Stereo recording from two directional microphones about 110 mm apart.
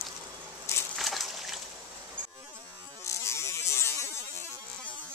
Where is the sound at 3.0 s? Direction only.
25° left (ahead or behind).